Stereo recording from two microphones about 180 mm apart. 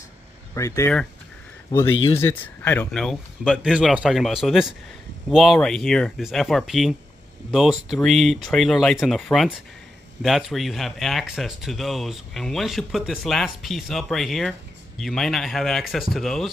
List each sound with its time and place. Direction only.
0.6 s speech: 15° left (ahead or behind)
2.1 s speech: 15° left (ahead or behind)
2.9 s speech: centre (ahead or behind)